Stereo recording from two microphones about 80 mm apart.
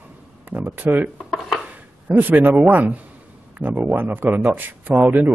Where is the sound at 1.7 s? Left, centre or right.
Right.